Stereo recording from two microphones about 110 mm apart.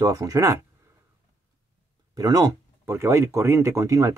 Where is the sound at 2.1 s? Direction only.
35° right (ahead or behind).